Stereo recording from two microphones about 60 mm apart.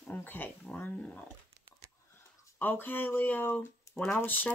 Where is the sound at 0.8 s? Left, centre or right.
Left.